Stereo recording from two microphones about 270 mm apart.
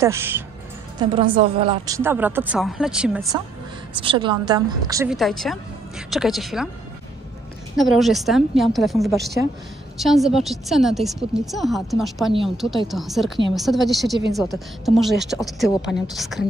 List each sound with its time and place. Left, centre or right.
0.0 s a woman's voice: centre
3.9 s a woman's voice: centre
5.1 s a woman's voice: centre
7.7 s a woman's voice: centre